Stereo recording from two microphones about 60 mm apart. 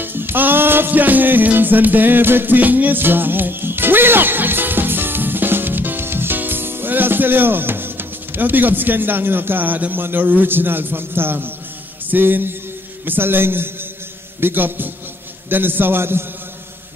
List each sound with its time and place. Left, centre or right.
0.0 s music: right
12.1 s a man's voice: right